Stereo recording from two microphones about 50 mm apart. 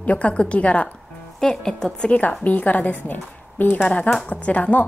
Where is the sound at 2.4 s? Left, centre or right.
Left.